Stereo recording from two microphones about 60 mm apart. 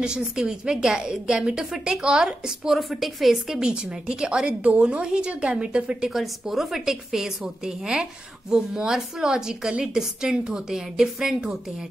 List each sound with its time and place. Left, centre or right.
0.4 s a woman's voice: centre
2.8 s a woman's voice: centre
6.0 s a woman's voice: centre